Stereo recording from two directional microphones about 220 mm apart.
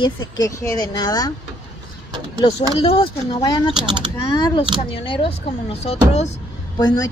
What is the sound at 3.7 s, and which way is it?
Speech, 20° right (ahead or behind).